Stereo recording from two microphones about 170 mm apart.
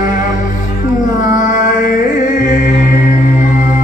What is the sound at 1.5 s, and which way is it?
Music, 50° left (ahead or behind).